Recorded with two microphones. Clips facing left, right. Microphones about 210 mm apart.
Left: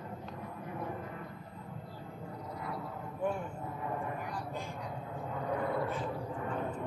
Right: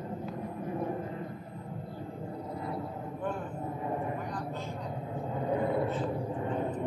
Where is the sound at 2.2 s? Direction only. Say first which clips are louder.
Right 3 dB; 30° right (ahead or behind).